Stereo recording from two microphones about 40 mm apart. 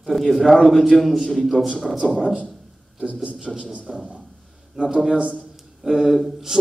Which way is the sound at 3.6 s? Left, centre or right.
Right.